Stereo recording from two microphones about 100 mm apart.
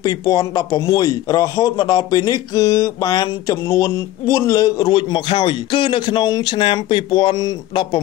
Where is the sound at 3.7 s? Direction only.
30° left (ahead or behind).